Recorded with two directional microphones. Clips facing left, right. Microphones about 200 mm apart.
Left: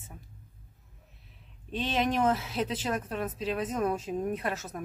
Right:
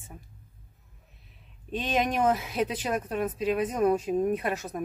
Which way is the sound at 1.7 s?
15° right (ahead or behind).